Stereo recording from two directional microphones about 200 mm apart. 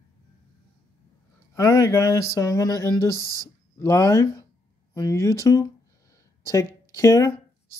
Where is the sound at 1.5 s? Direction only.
15° left (ahead or behind).